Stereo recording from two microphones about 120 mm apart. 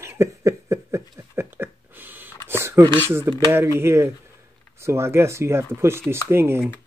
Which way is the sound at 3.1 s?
20° right (ahead or behind).